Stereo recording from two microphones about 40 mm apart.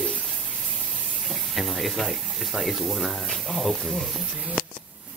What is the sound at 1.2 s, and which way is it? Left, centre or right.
Speech, centre.